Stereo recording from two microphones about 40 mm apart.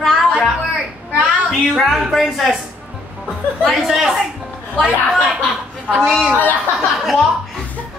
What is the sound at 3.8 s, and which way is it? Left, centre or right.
Speech, centre.